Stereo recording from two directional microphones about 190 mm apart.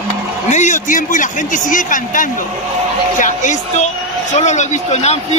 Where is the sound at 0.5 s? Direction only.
40° left (ahead or behind).